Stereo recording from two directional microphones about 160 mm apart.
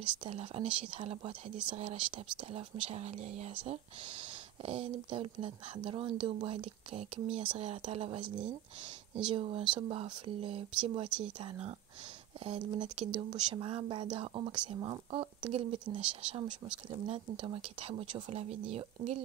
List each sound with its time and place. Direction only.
0.2 s speech: 40° right (ahead or behind)
11.1 s speech: 5° right (ahead or behind)
12.4 s speech: 35° right (ahead or behind)